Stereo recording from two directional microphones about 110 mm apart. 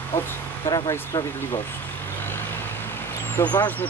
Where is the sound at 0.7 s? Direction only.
35° left (ahead or behind).